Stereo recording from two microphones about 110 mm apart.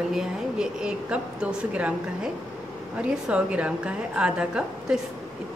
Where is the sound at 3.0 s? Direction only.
10° right (ahead or behind).